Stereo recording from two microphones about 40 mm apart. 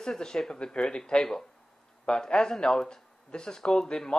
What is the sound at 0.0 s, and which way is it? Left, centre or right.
Speech, centre.